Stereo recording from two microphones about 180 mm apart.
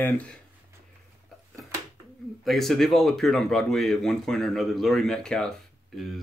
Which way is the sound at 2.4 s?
Centre (ahead or behind).